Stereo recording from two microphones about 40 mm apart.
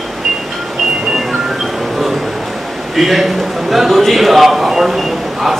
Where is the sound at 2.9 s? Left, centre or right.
Centre.